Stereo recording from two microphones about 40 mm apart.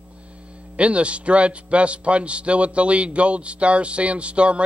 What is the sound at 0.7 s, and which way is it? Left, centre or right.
A man's voice, right.